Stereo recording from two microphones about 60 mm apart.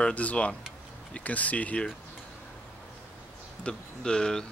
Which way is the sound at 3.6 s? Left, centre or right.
Centre.